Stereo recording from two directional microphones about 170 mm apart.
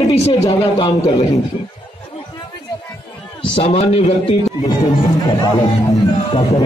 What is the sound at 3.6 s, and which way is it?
Speech, 35° left (ahead or behind).